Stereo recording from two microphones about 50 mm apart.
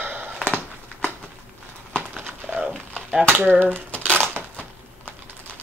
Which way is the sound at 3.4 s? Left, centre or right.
Right.